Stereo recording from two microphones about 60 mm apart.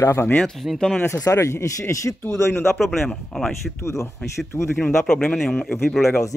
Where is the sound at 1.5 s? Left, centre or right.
Left.